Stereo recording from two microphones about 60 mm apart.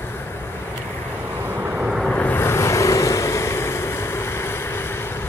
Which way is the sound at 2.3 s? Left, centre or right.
Left.